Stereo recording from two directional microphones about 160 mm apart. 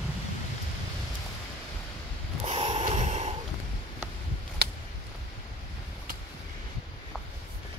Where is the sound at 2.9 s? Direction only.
45° right (ahead or behind).